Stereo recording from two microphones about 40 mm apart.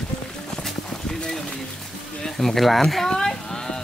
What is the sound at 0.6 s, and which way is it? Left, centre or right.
Clip-clop, centre.